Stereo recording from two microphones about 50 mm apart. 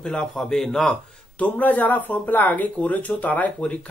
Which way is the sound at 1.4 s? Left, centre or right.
Left.